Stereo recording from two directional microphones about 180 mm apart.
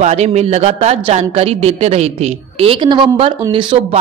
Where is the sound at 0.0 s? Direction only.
40° right (ahead or behind).